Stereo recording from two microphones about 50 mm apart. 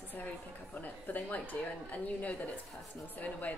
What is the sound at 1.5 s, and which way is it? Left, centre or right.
A woman's voice, left.